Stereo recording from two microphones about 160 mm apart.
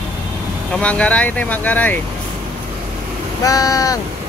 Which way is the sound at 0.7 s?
10° left (ahead or behind).